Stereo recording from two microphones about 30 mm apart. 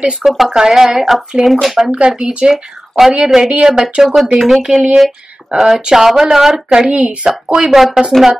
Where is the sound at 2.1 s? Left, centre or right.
Right.